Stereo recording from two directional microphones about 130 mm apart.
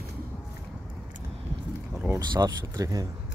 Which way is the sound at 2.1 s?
30° right (ahead or behind).